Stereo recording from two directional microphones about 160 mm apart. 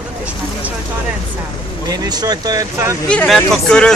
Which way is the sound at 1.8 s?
25° right (ahead or behind).